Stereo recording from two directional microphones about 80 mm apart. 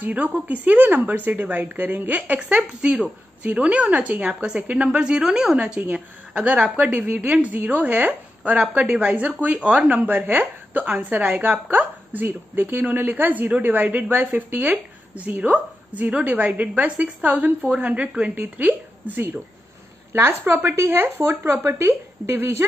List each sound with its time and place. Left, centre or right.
0.0 s a woman's voice: centre